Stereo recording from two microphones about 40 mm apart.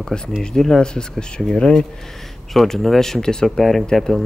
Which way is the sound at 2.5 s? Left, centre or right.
Centre.